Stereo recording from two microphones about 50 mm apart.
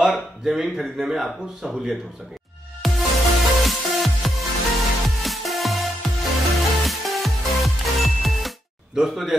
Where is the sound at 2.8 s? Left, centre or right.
Centre.